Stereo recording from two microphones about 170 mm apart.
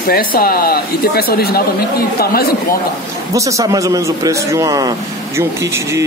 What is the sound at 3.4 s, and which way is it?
A man's voice, 20° right (ahead or behind).